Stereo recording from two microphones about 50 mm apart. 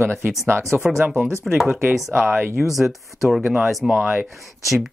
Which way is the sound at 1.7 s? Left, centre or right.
Right.